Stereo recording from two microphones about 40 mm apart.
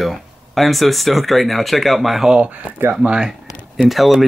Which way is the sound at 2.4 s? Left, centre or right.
Right.